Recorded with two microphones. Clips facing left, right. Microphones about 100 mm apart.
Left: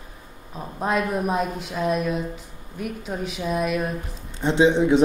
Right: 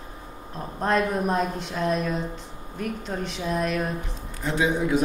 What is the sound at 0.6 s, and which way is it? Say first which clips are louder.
A woman's voice: right 1 dB; 5° left (ahead or behind).